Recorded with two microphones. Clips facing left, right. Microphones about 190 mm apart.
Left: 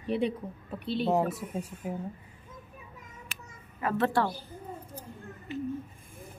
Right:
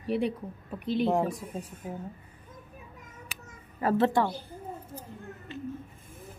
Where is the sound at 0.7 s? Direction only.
15° right (ahead or behind).